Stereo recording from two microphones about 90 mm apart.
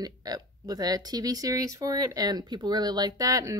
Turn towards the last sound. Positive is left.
turn(degrees=-40)  # may be behind; listen again after turning